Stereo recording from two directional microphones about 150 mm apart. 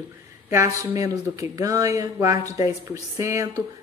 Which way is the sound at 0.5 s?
20° right (ahead or behind).